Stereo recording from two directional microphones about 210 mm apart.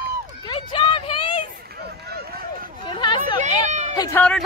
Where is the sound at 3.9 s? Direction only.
20° left (ahead or behind).